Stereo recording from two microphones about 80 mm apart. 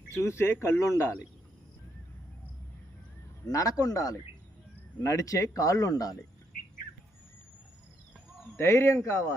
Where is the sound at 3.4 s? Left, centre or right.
Left.